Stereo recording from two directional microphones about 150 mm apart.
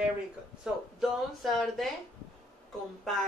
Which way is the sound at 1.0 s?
Centre (ahead or behind).